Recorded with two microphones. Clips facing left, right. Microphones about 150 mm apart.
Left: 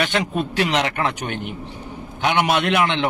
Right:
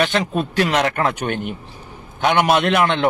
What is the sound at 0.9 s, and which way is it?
A man's voice, 50° right (ahead or behind).